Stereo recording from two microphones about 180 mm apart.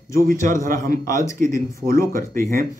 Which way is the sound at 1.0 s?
15° left (ahead or behind).